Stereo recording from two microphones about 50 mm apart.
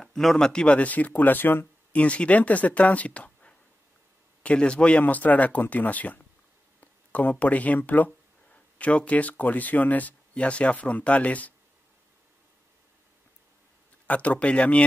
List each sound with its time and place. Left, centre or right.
0.0 s speech: centre; by 1.7 s left
1.9 s speech: left
14.0 s speech: left